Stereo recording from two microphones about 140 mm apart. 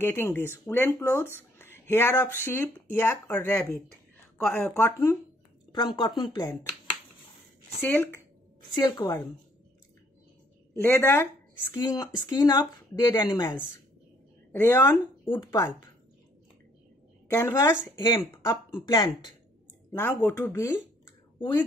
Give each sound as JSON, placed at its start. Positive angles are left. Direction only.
{"t": 0.0, "sound": "speech", "side_deg": 15}
{"t": 5.7, "sound": "speech", "side_deg": 30}
{"t": 7.8, "sound": "speech", "side_deg": 15}
{"t": 10.8, "sound": "speech", "side_deg": 15}
{"t": 11.8, "sound": "speech", "side_deg": 25}
{"t": 14.5, "sound": "speech", "side_deg": 15}
{"t": 15.2, "sound": "speech", "side_deg": 35}
{"t": 17.3, "sound": "speech", "side_deg": 20}
{"t": 17.9, "sound": "speech", "side_deg": 35}
{"t": 19.9, "sound": "speech", "side_deg": 15}
{"t": 21.4, "sound": "speech", "side_deg": 35}